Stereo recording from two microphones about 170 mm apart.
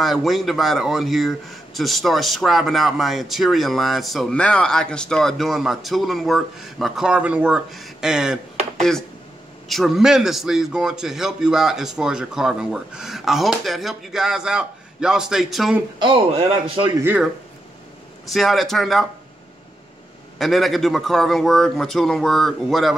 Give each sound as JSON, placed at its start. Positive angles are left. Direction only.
{"t": 0.0, "sound": "speech", "side_deg": 0}
{"t": 8.7, "sound": "a sound", "side_deg": 0}
{"t": 9.7, "sound": "speech", "side_deg": 0}
{"t": 16.0, "sound": "a man's voice", "side_deg": -30}
{"t": 17.0, "sound": "speech", "side_deg": -10}
{"t": 18.2, "sound": "speech", "side_deg": 0}
{"t": 20.3, "sound": "speech", "side_deg": 0}